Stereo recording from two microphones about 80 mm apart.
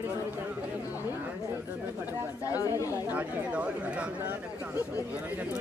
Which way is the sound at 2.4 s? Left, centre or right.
Left.